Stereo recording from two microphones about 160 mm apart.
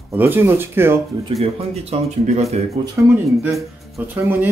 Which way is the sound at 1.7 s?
40° right (ahead or behind).